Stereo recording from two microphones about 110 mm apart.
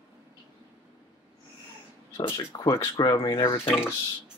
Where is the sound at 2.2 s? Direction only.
50° left (ahead or behind).